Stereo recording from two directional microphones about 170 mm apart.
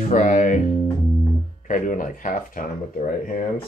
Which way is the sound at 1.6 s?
50° left (ahead or behind).